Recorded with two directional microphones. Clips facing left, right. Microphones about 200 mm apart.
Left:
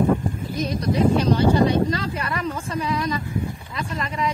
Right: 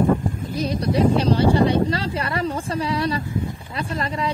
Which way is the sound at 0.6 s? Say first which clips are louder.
Right 1 dB; 30° right (ahead or behind).